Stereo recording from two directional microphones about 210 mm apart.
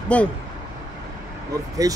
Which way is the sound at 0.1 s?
5° left (ahead or behind).